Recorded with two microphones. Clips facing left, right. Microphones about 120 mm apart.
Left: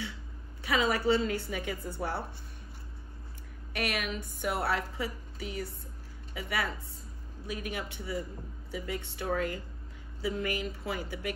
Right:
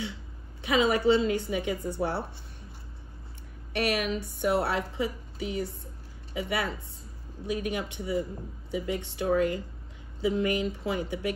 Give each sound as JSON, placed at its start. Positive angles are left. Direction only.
{"t": 0.6, "sound": "a woman's voice", "side_deg": -20}
{"t": 3.7, "sound": "a woman's voice", "side_deg": -30}